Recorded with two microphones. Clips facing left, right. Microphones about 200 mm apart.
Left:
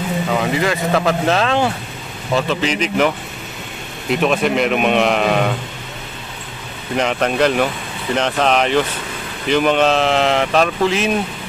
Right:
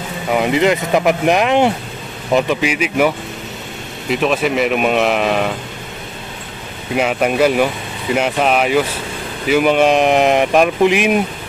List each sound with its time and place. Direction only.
0.3 s speech: 15° right (ahead or behind)
4.1 s a man's voice: centre (ahead or behind)
7.0 s speech: 10° right (ahead or behind)